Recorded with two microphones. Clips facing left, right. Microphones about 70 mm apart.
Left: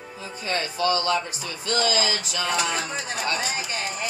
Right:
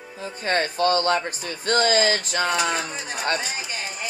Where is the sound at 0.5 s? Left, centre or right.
Right.